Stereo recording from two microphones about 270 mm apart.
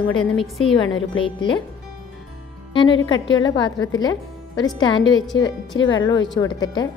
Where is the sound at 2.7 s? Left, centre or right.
Centre.